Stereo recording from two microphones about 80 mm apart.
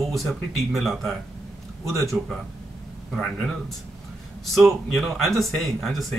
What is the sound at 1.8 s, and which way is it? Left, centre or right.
Speech, right.